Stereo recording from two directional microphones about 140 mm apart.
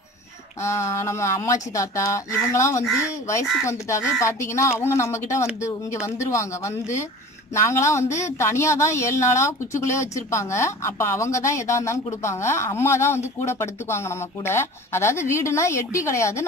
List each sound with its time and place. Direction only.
0.6 s a woman's voice: 20° left (ahead or behind)